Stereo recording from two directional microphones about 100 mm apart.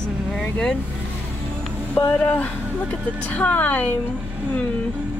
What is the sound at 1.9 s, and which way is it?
Speech, 15° left (ahead or behind).